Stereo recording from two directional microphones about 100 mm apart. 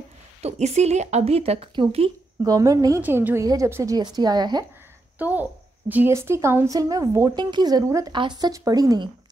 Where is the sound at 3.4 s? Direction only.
35° right (ahead or behind).